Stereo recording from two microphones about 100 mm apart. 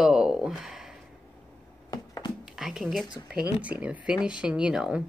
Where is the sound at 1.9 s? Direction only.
40° left (ahead or behind).